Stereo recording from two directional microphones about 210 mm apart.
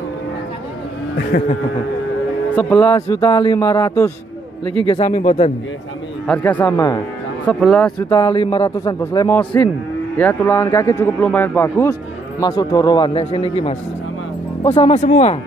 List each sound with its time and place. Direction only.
1.3 s a sound: 45° left (ahead or behind)
2.5 s speech: 5° left (ahead or behind)
4.8 s speech: 30° left (ahead or behind)
6.2 s speech: 5° left (ahead or behind)
8.1 s speech: 20° left (ahead or behind)
14.8 s speech: 30° left (ahead or behind)